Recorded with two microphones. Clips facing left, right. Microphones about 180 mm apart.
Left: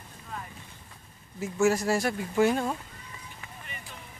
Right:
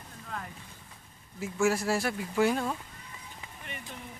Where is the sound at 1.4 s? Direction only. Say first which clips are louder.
Left 3 dB; 5° right (ahead or behind).